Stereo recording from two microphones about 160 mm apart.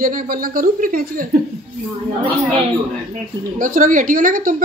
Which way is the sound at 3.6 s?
55° right (ahead or behind).